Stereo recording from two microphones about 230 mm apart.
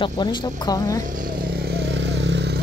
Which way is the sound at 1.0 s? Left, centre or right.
Right.